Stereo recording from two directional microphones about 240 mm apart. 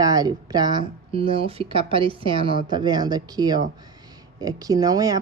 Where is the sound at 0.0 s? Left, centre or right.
Centre.